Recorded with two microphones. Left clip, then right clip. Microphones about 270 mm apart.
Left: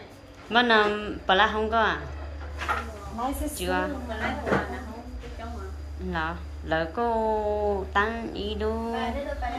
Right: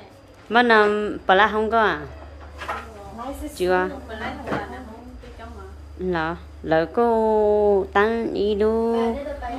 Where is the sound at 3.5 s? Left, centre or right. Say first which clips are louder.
Right 9 dB; right.